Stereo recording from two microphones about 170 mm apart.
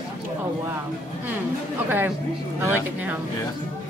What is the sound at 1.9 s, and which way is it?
A woman's voice, 10° right (ahead or behind).